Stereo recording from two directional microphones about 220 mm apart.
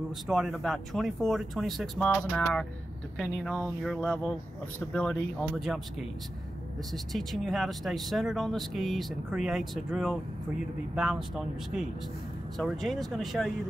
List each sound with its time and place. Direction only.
0.3 s speech: centre (ahead or behind)